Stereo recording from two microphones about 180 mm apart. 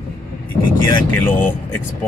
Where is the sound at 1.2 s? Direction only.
10° left (ahead or behind).